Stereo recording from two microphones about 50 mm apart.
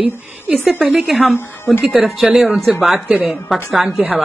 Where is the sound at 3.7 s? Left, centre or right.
Centre.